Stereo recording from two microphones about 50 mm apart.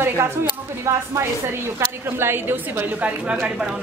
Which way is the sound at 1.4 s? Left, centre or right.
Right.